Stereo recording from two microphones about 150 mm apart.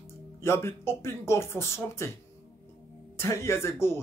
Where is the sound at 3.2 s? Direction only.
20° left (ahead or behind).